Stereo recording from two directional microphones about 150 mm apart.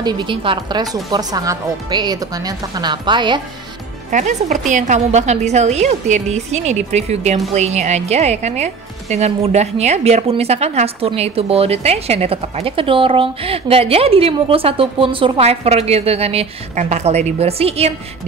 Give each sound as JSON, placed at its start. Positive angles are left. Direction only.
{"t": 0.0, "sound": "speech", "side_deg": -30}
{"t": 4.1, "sound": "a woman's voice", "side_deg": -55}